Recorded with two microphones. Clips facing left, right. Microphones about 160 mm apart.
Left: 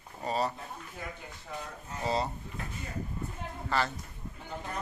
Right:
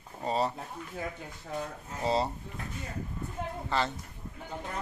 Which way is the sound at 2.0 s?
30° right (ahead or behind).